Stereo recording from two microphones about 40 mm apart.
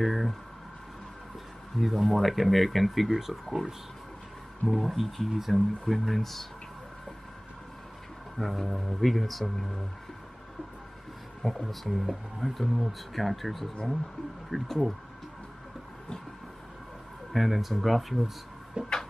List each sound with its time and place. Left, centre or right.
0.0 s a sound: centre
1.8 s speech: centre
4.6 s speech: centre
8.4 s speech: centre
11.4 s speech: centre
17.3 s speech: centre
18.8 s a sound: right